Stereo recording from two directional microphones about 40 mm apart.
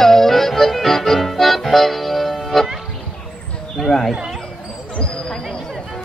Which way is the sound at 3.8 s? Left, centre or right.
Centre.